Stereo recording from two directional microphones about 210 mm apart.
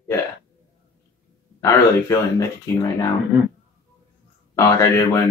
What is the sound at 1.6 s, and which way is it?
Speech, 15° left (ahead or behind).